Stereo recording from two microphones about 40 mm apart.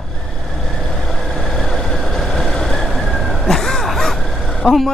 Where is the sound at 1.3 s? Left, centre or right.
Centre.